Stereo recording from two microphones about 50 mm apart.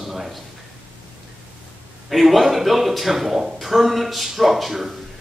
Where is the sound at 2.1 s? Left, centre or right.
Centre.